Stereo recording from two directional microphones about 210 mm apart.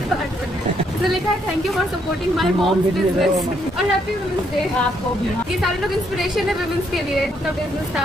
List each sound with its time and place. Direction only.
2.3 s speech: centre (ahead or behind)